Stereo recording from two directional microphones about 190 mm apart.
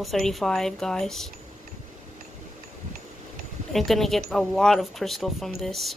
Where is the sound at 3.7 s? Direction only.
Centre (ahead or behind).